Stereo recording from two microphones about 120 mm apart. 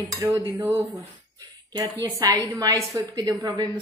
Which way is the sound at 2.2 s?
30° right (ahead or behind).